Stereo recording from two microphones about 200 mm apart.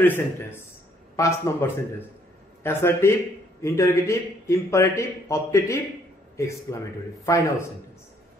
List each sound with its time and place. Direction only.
0.0 s a man's voice: 10° left (ahead or behind)